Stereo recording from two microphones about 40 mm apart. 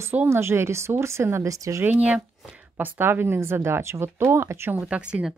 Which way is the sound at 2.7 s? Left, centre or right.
Right.